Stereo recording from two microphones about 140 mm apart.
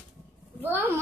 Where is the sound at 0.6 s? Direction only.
15° right (ahead or behind).